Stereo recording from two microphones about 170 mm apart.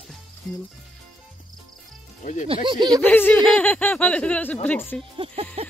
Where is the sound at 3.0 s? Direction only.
10° left (ahead or behind).